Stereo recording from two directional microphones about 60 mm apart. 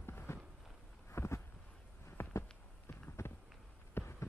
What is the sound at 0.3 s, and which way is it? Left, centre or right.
Walk, left.